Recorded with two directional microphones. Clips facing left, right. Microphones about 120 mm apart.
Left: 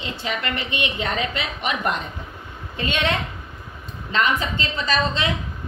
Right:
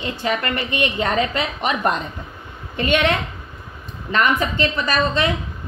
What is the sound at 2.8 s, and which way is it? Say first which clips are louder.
Speech: right 5 dB; 60° right (ahead or behind).